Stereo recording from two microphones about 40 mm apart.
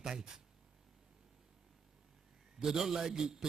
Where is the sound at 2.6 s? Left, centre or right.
Centre.